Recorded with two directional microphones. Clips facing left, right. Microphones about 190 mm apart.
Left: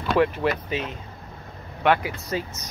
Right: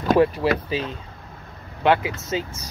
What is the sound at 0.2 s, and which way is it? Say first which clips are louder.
Speech: right 3 dB; 35° right (ahead or behind).